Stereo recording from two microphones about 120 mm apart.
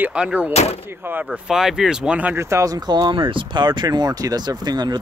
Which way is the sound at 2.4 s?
25° right (ahead or behind).